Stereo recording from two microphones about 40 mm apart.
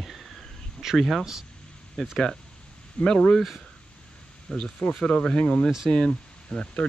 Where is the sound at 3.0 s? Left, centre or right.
Centre.